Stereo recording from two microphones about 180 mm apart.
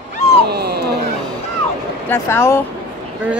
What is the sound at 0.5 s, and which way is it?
Dog, 65° right (ahead or behind).